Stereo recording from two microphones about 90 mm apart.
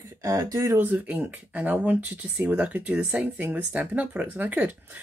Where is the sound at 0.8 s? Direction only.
20° right (ahead or behind).